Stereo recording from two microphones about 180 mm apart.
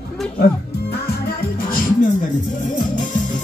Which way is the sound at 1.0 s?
60° left (ahead or behind).